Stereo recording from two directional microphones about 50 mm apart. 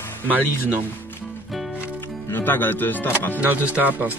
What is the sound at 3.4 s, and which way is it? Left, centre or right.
Speech, right.